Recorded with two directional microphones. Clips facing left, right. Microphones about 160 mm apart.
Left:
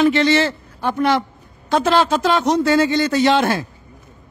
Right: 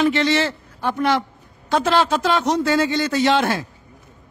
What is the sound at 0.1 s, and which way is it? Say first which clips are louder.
Speech: left 3 dB; 40° left (ahead or behind).